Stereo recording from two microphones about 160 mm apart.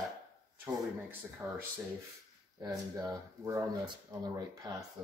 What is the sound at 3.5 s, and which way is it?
Speech, 25° right (ahead or behind).